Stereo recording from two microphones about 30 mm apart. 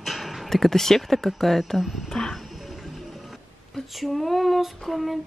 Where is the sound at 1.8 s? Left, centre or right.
Centre.